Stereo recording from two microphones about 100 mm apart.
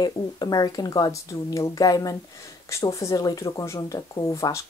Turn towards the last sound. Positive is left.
turn(degrees=30)  # may be behind; listen again after turning